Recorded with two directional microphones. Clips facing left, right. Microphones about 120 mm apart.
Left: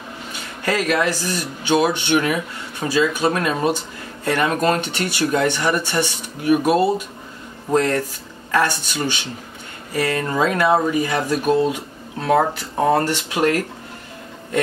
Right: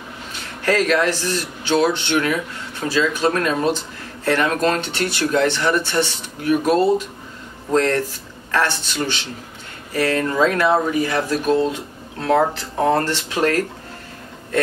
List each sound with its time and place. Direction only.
0.7 s speech: 10° left (ahead or behind)